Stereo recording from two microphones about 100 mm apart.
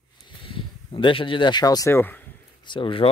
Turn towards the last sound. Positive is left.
turn(degrees=60)  # may be behind; listen again after turning